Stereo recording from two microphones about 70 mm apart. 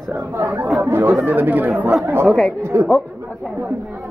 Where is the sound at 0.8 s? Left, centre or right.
Right.